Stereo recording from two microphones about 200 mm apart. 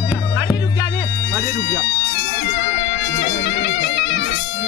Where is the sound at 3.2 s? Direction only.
65° left (ahead or behind).